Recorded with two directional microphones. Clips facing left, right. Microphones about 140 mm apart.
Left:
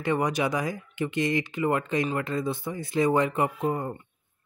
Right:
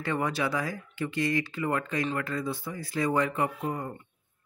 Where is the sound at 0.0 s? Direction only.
20° left (ahead or behind).